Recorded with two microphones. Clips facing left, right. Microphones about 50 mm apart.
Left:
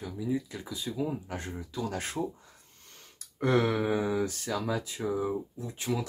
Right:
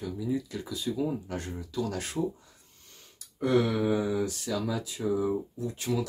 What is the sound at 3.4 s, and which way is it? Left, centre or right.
Speech, left.